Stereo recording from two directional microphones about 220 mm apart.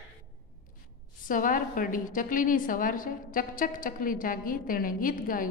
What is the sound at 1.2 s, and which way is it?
A woman's voice, 40° left (ahead or behind).